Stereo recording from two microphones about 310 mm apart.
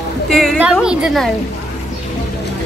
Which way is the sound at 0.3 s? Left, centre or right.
Centre.